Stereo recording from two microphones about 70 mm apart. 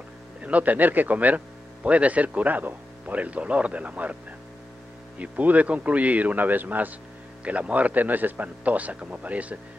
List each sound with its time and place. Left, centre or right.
0.4 s speech: right
5.2 s speech: right